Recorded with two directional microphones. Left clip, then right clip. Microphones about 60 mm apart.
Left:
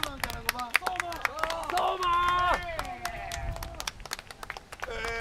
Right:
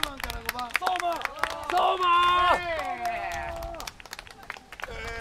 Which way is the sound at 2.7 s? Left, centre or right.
Left.